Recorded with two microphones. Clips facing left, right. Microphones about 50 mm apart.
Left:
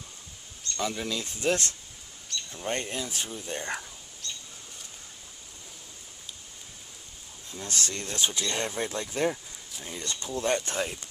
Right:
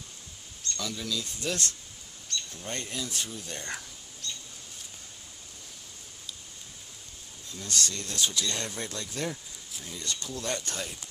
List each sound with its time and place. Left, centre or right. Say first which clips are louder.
0.7 s speech: left 4 dB; left
7.5 s speech: even; left